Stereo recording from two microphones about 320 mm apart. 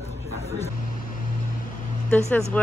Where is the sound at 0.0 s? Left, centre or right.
Centre.